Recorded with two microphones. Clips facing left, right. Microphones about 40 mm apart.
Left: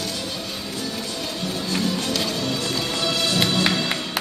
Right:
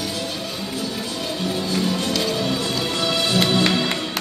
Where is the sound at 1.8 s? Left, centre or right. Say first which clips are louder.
Right 1 dB; centre.